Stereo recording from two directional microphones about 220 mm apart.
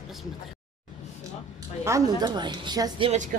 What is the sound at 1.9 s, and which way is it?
Speech, 15° right (ahead or behind).